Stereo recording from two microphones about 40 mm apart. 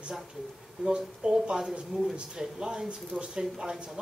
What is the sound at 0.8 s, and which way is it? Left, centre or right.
Speech, centre.